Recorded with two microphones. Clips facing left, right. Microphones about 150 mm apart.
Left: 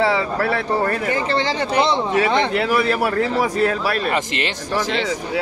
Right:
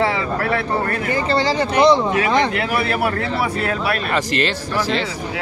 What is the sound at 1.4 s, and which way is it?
Speech, 25° left (ahead or behind).